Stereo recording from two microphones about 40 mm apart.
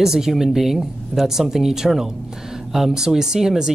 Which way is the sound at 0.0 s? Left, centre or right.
Centre.